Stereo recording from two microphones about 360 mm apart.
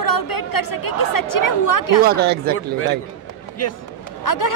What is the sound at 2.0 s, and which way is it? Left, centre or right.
Speech, right.